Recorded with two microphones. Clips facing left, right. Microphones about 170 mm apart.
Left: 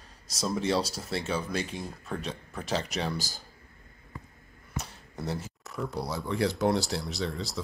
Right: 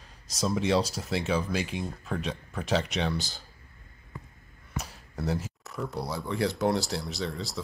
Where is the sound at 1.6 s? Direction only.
30° left (ahead or behind).